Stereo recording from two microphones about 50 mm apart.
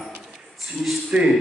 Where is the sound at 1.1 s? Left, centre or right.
Centre.